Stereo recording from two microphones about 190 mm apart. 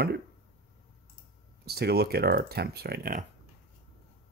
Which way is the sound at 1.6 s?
55° right (ahead or behind).